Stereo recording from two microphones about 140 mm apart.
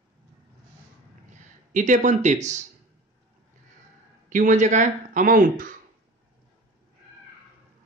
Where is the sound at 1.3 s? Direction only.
65° right (ahead or behind).